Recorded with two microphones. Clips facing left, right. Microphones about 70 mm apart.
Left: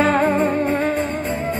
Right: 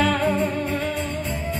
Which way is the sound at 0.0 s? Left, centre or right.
Left.